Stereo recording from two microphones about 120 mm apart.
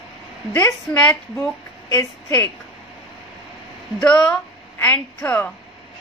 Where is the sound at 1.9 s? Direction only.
25° left (ahead or behind).